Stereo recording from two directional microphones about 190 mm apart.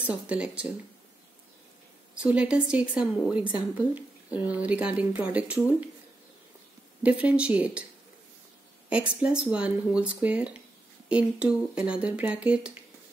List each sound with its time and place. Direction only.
0.0 s speech: 5° right (ahead or behind)
2.1 s speech: 5° right (ahead or behind)
7.0 s speech: 5° right (ahead or behind)
9.2 s speech: 5° right (ahead or behind)